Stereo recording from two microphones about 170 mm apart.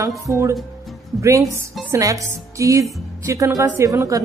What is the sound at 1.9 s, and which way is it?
Speech, 20° right (ahead or behind).